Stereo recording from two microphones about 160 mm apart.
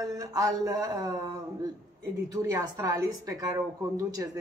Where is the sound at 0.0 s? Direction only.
25° right (ahead or behind).